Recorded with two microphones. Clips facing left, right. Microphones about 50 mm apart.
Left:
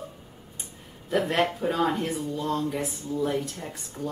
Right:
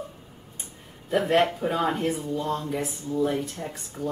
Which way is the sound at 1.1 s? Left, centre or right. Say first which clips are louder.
Right 3 dB; centre.